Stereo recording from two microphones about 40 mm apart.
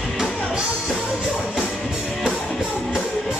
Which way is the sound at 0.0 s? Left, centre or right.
Centre.